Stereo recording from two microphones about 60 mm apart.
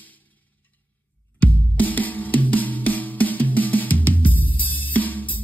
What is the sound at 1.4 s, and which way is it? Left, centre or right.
Music, left.